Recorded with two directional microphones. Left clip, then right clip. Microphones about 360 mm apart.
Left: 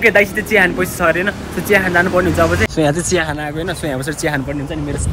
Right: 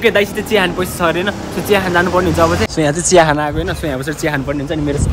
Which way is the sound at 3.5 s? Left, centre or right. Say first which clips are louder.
Right 1 dB; centre.